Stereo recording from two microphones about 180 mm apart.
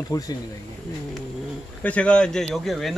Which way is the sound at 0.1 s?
20° left (ahead or behind).